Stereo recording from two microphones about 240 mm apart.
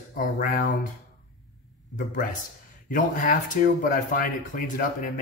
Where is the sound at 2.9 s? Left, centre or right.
Left.